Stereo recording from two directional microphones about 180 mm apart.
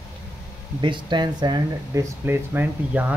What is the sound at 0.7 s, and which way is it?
Speech, 25° right (ahead or behind).